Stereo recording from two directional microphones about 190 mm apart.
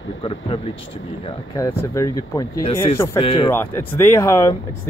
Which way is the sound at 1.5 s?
15° left (ahead or behind).